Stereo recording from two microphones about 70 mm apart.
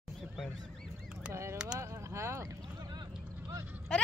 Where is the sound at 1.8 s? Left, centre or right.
Right.